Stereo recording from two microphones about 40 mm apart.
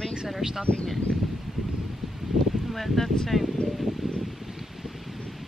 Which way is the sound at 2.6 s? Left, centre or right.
Centre.